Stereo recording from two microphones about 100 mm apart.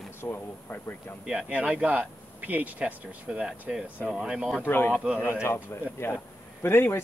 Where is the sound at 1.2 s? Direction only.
10° right (ahead or behind).